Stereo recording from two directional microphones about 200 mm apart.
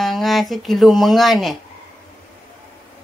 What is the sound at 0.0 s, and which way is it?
Speech, centre (ahead or behind).